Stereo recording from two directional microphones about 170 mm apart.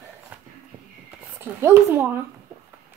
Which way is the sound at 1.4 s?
15° right (ahead or behind).